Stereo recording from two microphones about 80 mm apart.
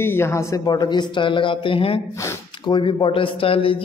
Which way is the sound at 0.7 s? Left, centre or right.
Left.